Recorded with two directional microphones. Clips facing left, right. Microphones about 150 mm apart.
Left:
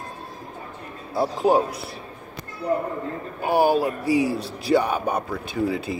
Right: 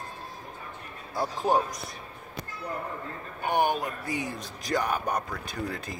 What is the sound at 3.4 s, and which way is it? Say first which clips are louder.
Speech: left 7 dB; 35° left (ahead or behind).